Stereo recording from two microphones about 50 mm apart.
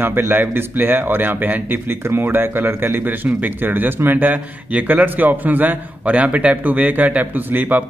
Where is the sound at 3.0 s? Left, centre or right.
Right.